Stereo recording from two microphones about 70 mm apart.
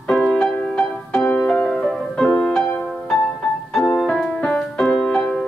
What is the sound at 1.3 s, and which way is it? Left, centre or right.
Music, left.